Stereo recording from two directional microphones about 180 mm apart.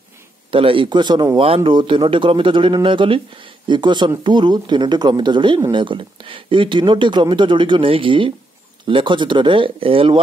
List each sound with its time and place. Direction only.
0.5 s speech: 30° right (ahead or behind)